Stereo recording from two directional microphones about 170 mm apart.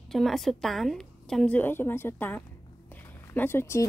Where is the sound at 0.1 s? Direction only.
Centre (ahead or behind).